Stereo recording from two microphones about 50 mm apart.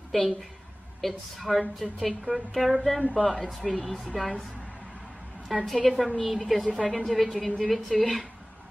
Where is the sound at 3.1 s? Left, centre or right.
Right.